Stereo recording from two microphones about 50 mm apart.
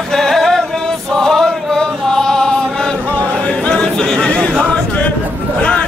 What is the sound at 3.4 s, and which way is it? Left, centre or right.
Chatter, centre.